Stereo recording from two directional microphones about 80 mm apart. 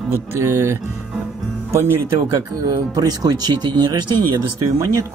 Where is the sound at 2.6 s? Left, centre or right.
Right.